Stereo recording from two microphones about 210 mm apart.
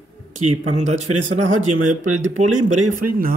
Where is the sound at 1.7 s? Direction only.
90° right.